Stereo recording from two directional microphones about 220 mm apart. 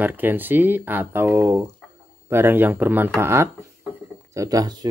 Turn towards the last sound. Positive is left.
turn(degrees=-15)  # may be behind; listen again after turning